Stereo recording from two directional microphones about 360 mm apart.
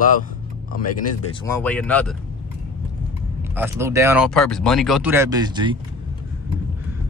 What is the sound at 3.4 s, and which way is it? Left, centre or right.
Speech, centre.